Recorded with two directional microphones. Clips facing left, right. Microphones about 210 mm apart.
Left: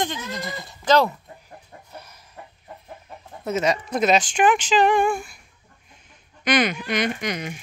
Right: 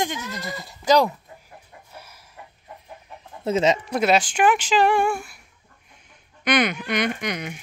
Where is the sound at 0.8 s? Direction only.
15° right (ahead or behind).